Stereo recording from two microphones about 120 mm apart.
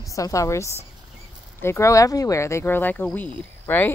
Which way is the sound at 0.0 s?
25° left (ahead or behind).